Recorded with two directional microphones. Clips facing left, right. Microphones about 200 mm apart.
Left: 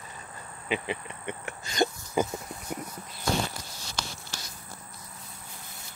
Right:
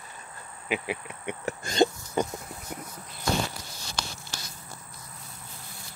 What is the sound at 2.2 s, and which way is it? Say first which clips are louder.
Speech: left 1 dB; 5° left (ahead or behind).